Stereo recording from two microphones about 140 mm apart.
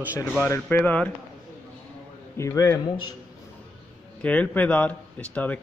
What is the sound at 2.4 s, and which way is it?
Speech, 20° left (ahead or behind).